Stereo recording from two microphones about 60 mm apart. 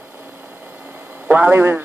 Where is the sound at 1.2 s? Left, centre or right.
Right.